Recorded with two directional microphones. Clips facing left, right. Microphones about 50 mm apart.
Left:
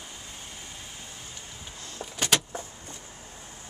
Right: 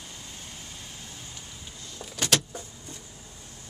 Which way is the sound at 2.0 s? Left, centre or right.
Centre.